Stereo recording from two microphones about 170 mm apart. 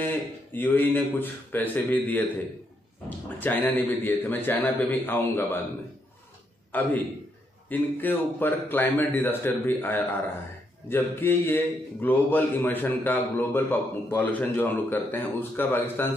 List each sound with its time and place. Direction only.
0.0 s a man's voice: 10° left (ahead or behind)
3.3 s a man's voice: 10° left (ahead or behind)
6.7 s a man's voice: 10° left (ahead or behind)